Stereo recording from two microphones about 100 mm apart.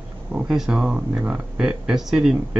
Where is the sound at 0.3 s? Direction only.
10° right (ahead or behind).